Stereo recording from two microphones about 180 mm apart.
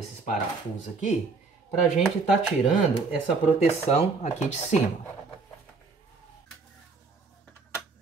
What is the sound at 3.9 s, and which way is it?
Speech, 35° left (ahead or behind).